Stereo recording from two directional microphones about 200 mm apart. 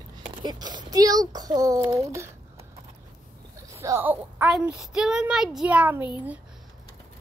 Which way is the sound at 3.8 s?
10° right (ahead or behind).